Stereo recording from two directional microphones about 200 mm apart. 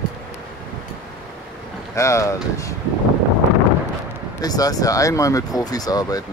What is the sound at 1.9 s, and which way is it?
Speech, 15° left (ahead or behind).